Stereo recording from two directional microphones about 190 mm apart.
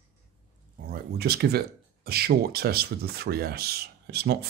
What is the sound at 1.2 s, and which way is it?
Speech, 55° right (ahead or behind).